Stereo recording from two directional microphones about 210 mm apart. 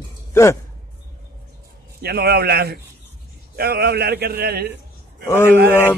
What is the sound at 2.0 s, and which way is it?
A man's voice, 50° right (ahead or behind).